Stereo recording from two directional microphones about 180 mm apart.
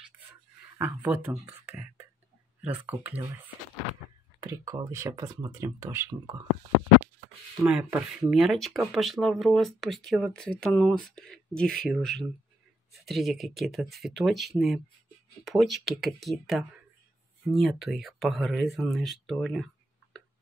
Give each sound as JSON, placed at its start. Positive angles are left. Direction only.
{"t": 0.7, "sound": "speech", "side_deg": -10}
{"t": 2.6, "sound": "speech", "side_deg": -10}
{"t": 4.4, "sound": "speech", "side_deg": -20}
{"t": 7.6, "sound": "speech", "side_deg": -5}